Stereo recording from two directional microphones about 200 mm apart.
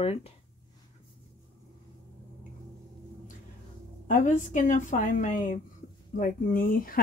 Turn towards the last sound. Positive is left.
turn(degrees=45)  # may be behind; listen again after turning